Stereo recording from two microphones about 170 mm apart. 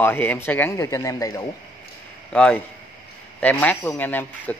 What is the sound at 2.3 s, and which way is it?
A man's voice, 5° left (ahead or behind).